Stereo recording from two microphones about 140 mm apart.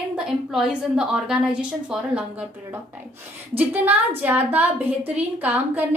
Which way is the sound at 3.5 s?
15° right (ahead or behind).